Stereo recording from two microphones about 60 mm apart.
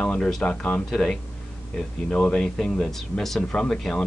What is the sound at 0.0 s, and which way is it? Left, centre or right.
Speech, centre.